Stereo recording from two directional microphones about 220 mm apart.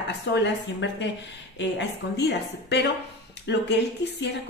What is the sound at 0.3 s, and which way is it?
A woman's voice, 55° left (ahead or behind).